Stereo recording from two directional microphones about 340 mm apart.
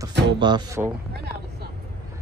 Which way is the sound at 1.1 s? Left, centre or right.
Right.